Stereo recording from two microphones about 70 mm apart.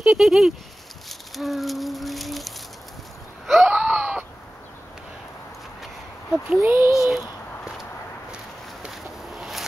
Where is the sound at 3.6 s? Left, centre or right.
Centre.